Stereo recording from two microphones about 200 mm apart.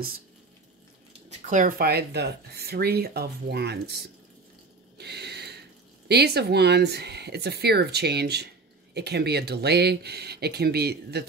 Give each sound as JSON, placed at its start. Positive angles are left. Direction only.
{"t": 1.3, "sound": "speech", "side_deg": -40}
{"t": 4.9, "sound": "a sound", "side_deg": -55}
{"t": 6.0, "sound": "speech", "side_deg": -55}